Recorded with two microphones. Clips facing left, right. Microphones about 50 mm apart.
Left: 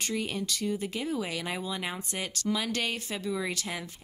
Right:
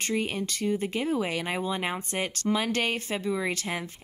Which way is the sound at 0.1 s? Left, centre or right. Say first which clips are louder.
Right 4 dB; right.